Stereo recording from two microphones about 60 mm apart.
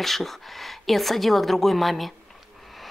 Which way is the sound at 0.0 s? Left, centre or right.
Centre.